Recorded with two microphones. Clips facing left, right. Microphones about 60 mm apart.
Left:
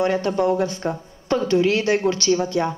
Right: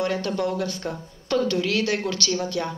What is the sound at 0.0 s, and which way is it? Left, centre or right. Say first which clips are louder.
A woman's voice: left 5 dB; left.